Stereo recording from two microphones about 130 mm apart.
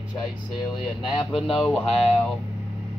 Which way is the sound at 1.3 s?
Centre (ahead or behind).